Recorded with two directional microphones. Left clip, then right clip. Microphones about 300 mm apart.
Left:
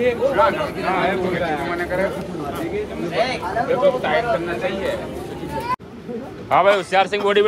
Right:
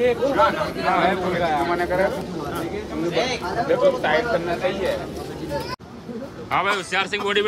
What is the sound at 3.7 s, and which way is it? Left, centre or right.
Speech, right.